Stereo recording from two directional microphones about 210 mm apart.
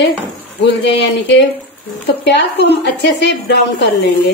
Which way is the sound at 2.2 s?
55° left (ahead or behind).